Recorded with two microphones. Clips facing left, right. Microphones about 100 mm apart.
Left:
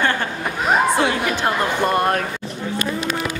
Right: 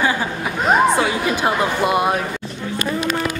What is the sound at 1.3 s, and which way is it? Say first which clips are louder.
Speech: right 1 dB; 10° right (ahead or behind).